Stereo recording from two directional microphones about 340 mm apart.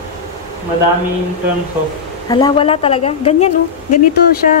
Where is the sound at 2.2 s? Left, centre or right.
Centre.